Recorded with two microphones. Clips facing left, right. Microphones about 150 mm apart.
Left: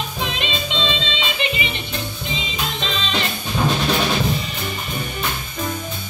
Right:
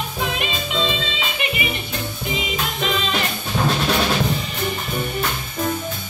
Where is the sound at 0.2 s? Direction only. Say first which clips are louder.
Right 1 dB; 25° left (ahead or behind).